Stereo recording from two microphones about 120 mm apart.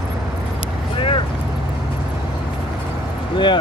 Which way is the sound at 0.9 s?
45° left (ahead or behind).